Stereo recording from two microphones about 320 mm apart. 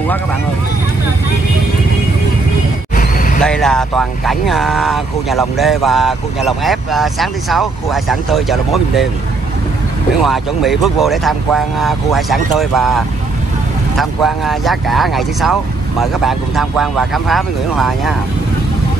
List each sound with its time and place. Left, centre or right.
3.0 s vehicle: left
3.4 s speech: centre
10.2 s speech: centre